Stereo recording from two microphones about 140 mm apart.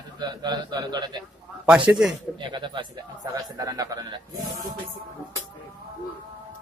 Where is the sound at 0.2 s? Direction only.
30° right (ahead or behind).